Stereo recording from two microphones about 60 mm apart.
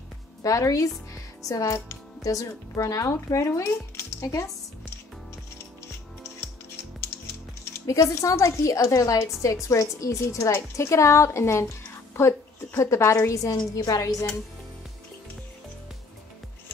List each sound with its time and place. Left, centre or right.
0.4 s a woman's voice: left
7.8 s a woman's voice: left
10.5 s a woman's voice: left